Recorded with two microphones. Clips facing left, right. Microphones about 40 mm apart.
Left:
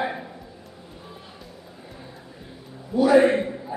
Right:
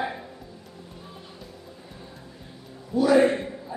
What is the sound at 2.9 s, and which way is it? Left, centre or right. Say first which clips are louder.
Speech: left 2 dB; centre.